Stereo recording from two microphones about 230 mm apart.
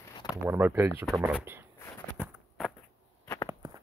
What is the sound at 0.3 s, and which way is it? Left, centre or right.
Speech, centre.